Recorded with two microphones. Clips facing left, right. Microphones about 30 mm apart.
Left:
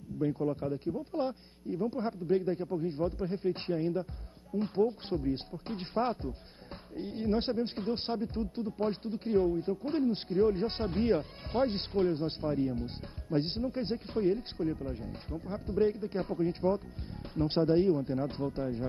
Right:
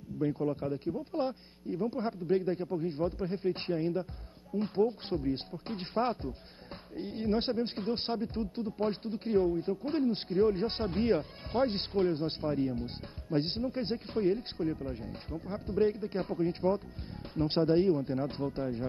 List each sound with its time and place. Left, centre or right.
0.2 s speech: centre
2.0 s a man's voice: centre
2.3 s speech: right
5.8 s speech: right
12.6 s speech: centre
15.4 s speech: right